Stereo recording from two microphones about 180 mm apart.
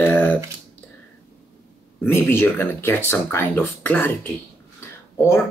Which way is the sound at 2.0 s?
10° left (ahead or behind).